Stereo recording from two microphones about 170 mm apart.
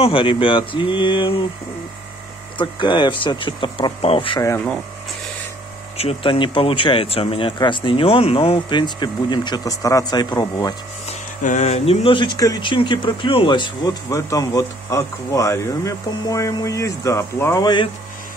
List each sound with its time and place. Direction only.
0.0 s speech: 30° left (ahead or behind)
2.5 s speech: 25° left (ahead or behind)
5.9 s speech: 35° left (ahead or behind)
11.1 s speech: 40° left (ahead or behind); by 17.8 s 25° left (ahead or behind)